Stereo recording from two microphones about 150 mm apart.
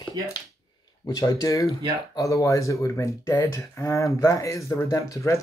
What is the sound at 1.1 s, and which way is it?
Speech, 25° left (ahead or behind).